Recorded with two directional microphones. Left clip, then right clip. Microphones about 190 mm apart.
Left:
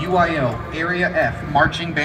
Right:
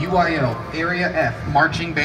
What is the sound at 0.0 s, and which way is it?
A man's voice, 50° left (ahead or behind).